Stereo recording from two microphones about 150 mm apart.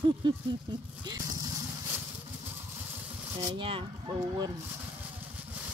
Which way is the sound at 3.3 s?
30° right (ahead or behind).